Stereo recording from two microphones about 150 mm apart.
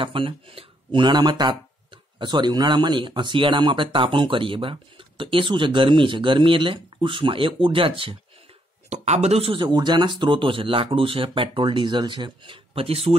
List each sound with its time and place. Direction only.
0.0 s speech: 35° right (ahead or behind)
8.8 s speech: 50° right (ahead or behind)